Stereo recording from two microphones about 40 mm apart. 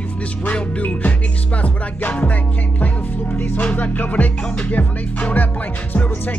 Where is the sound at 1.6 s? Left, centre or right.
Left.